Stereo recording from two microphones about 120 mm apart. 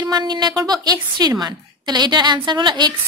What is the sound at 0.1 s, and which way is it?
Speech, 35° right (ahead or behind).